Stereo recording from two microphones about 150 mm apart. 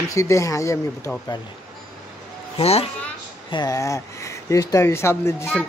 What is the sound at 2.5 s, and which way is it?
Speech, 45° left (ahead or behind).